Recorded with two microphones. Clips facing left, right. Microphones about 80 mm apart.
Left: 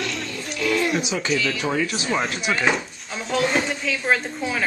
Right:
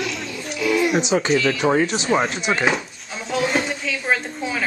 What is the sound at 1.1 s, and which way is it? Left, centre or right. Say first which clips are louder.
Speech: right 5 dB; right.